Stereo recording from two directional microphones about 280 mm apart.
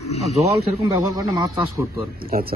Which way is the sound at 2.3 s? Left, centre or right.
Right.